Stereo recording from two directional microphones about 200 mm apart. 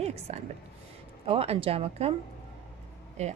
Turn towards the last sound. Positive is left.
turn(degrees=-35)  # may be behind; listen again after turning